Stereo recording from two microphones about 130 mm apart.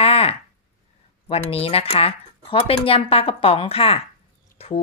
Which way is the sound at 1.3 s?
50° left (ahead or behind).